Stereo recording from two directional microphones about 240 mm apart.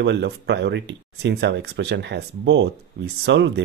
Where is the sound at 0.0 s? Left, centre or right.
Right.